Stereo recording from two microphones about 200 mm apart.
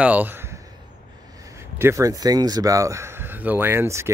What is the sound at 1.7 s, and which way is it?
Speech, 15° right (ahead or behind).